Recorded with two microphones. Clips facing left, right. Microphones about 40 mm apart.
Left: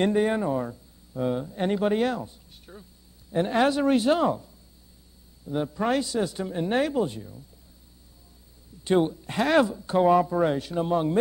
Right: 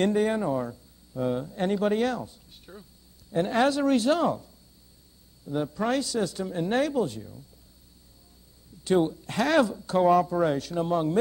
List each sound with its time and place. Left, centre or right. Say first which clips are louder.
0.0 s speech: left 1 dB; centre
2.6 s a sound: even; centre
3.3 s speech: left 1 dB; centre
5.5 s speech: left 1 dB; centre
8.8 s speech: left 1 dB; centre